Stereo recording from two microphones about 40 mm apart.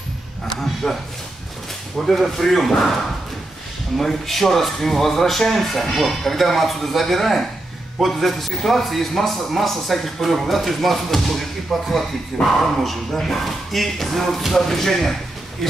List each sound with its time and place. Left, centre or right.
0.8 s speech: centre
2.0 s speech: centre
4.0 s speech: centre